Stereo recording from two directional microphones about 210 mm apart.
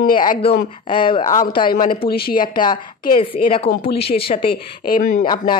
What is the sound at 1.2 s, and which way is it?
Speech, 35° left (ahead or behind).